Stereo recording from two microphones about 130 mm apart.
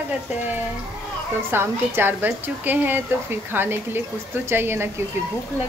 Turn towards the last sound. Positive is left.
turn(degrees=-20)  # may be behind; listen again after turning